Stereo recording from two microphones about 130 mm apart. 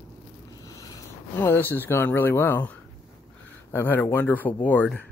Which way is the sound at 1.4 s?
15° left (ahead or behind).